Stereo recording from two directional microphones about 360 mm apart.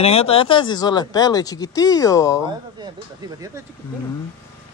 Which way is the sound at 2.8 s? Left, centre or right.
Centre.